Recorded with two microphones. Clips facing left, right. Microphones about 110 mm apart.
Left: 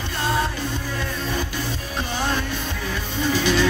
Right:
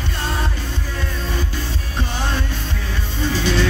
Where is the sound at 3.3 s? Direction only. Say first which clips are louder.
Even; 15° left (ahead or behind).